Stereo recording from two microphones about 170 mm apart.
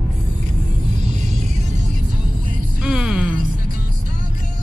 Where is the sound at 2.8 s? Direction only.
5° right (ahead or behind).